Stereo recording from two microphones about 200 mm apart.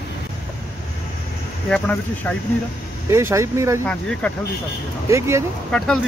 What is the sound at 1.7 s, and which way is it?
Speech, 5° left (ahead or behind).